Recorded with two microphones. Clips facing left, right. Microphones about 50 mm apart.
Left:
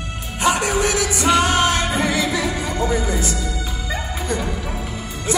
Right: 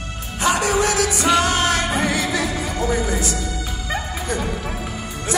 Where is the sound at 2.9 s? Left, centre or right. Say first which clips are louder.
Right 2 dB; right.